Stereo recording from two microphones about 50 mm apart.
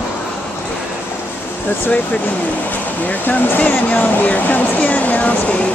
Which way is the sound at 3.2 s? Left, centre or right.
Left.